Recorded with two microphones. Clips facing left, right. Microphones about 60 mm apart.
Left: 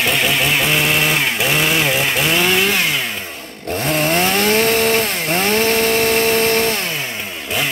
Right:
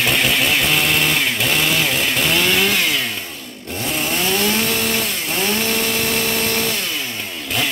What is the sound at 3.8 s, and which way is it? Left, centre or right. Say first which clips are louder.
Chainsaw: left 5 dB; left.